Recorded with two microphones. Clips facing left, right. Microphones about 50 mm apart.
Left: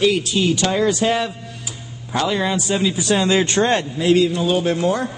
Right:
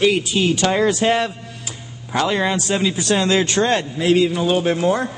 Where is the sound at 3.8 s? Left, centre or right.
Centre.